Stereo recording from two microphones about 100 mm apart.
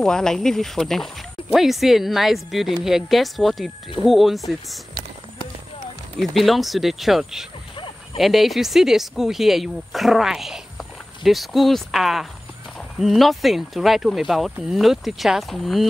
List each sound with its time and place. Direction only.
0.0 s speech: 5° left (ahead or behind)
6.1 s speech: centre (ahead or behind)
7.7 s a sound: 60° left (ahead or behind)
8.2 s speech: centre (ahead or behind)